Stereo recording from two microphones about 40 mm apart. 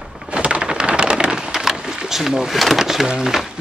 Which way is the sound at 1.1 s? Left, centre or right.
Centre.